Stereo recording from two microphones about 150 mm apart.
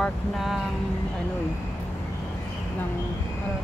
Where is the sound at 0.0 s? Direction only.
Centre (ahead or behind).